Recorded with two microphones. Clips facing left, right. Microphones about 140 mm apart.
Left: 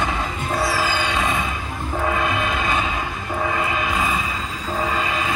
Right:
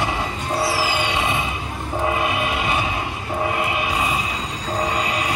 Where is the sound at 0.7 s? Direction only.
20° right (ahead or behind).